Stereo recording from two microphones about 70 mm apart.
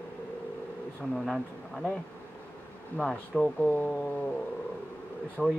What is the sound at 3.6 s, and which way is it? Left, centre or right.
Speech, left.